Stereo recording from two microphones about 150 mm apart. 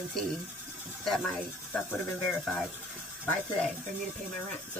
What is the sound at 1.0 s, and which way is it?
Speech, centre (ahead or behind).